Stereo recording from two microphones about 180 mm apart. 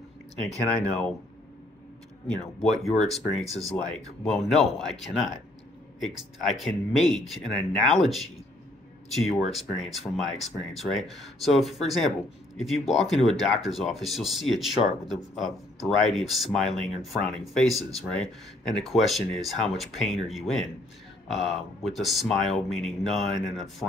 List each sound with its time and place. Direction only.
0.7 s speech: 5° left (ahead or behind)
2.8 s speech: 5° left (ahead or behind)
3.4 s speech: 35° left (ahead or behind)
4.2 s speech: centre (ahead or behind)